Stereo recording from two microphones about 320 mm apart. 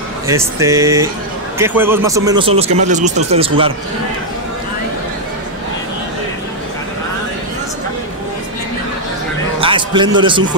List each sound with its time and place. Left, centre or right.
0.3 s speech: centre
9.6 s a man's voice: centre